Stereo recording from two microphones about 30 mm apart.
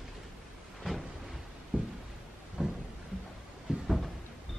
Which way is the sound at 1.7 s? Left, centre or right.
Right.